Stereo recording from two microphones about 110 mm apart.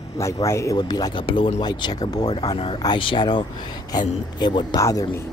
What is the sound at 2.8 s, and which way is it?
Speech, 45° left (ahead or behind).